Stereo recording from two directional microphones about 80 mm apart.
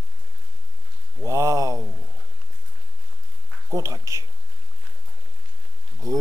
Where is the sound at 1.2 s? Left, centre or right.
Right.